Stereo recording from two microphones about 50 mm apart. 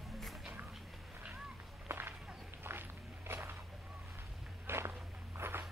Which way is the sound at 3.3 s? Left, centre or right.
Right.